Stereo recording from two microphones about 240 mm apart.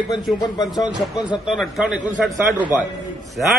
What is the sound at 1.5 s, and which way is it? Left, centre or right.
Speech, centre.